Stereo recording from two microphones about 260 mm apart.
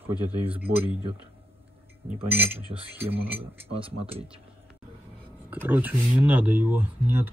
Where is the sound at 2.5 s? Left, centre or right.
Right.